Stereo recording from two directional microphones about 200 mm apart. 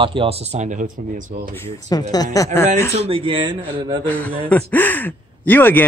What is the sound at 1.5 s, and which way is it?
Speech, 15° left (ahead or behind).